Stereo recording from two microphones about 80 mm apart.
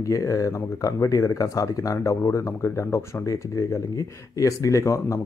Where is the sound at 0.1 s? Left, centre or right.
Left.